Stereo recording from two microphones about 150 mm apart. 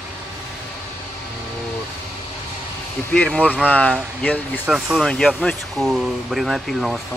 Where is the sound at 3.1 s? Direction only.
5° left (ahead or behind).